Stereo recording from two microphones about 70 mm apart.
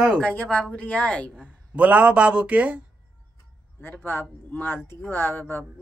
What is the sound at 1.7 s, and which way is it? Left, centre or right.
A man's voice, centre.